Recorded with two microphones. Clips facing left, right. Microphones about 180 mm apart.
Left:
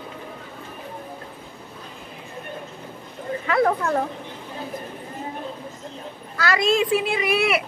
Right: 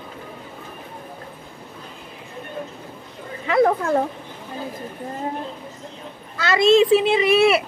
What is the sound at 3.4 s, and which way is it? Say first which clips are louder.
Speech: right 3 dB; 25° right (ahead or behind).